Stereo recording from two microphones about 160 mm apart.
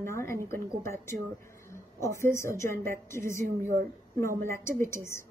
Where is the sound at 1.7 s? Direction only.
15° left (ahead or behind).